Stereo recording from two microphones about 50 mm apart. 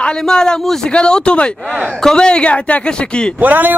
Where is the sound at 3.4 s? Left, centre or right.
Right.